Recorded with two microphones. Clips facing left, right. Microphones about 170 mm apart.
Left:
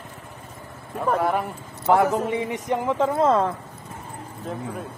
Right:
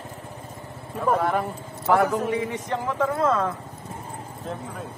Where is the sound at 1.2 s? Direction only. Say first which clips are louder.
Left 1 dB; 10° left (ahead or behind); by 3.5 s 25° left (ahead or behind).